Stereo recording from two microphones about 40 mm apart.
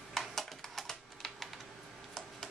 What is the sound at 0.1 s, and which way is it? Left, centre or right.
Typing, centre.